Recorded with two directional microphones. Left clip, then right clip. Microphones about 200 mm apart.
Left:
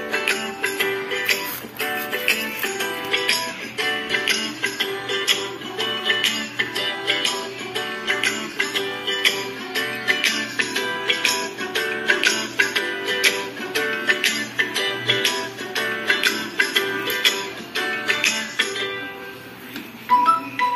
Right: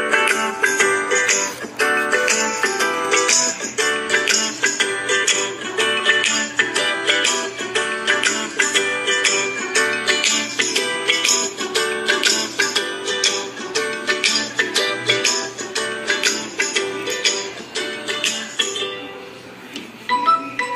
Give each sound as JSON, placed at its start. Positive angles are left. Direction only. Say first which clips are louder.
{"t": 0.0, "sound": "music", "louder": "right 6 dB", "side_deg": -15}